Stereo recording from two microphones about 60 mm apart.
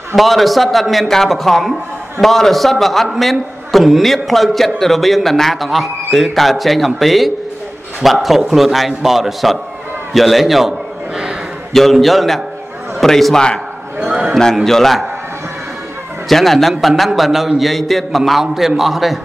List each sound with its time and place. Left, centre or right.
0.1 s a man's voice: centre
11.7 s a man's voice: centre
13.9 s a man's voice: centre
14.3 s a man's voice: centre
16.3 s a man's voice: centre